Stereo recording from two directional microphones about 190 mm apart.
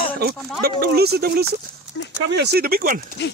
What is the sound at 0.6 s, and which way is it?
Speech, 55° right (ahead or behind).